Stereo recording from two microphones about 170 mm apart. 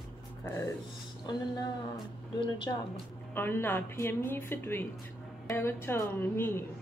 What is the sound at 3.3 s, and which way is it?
A woman's voice, 15° left (ahead or behind).